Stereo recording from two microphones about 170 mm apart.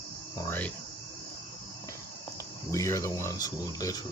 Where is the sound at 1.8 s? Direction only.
20° left (ahead or behind).